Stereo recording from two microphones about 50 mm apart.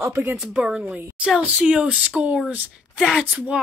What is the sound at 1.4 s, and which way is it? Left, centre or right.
A woman's voice, right.